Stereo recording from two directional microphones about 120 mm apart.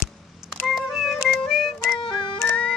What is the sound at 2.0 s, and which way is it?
Music, 40° left (ahead or behind).